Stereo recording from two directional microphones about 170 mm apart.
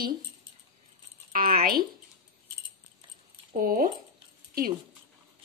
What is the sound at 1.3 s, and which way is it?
Speech, 55° right (ahead or behind).